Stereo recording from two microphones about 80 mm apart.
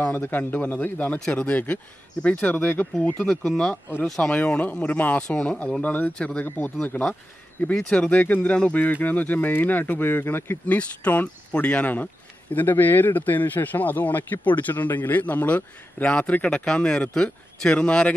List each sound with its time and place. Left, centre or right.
0.0 s a man's voice: centre
3.2 s a man's voice: centre